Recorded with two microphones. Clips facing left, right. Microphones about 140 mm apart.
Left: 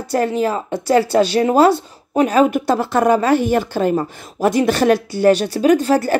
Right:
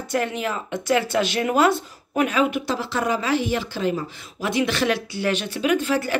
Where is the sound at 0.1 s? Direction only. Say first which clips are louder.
Left 7 dB; 35° left (ahead or behind).